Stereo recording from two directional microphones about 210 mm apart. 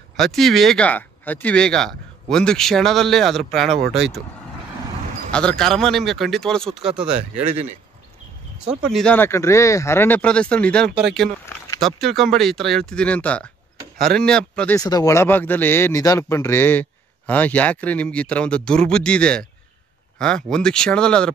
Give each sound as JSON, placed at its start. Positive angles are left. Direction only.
{"t": 0.2, "sound": "speech", "side_deg": 0}
{"t": 5.3, "sound": "speech", "side_deg": 5}
{"t": 8.9, "sound": "speech", "side_deg": 5}
{"t": 10.9, "sound": "speech", "side_deg": -50}
{"t": 11.8, "sound": "speech", "side_deg": 0}
{"t": 14.8, "sound": "speech", "side_deg": 15}